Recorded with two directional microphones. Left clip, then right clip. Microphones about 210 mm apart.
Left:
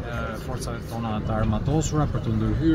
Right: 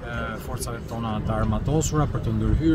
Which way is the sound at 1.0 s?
5° right (ahead or behind).